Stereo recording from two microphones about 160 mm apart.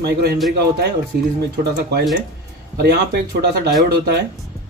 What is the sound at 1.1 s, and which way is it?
Speech, 90° right.